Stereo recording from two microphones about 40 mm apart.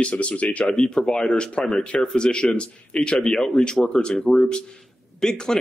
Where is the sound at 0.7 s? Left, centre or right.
Centre.